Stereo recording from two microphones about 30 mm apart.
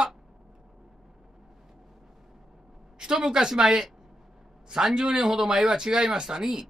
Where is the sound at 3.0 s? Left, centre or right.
Right.